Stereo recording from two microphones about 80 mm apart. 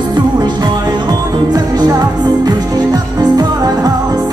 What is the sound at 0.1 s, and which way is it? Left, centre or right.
Music, right.